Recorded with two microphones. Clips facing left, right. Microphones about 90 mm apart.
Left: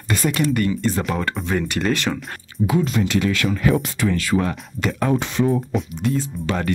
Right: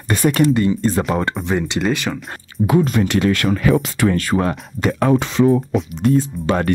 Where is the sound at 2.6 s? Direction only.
50° right (ahead or behind).